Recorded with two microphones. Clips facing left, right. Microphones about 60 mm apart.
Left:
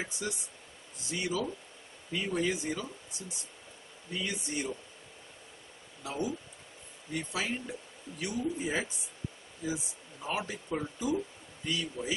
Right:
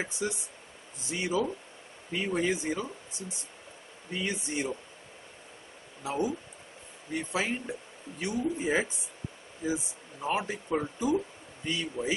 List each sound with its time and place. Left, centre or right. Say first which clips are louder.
0.0 s speech: right 4 dB; right
6.0 s speech: right 4 dB; right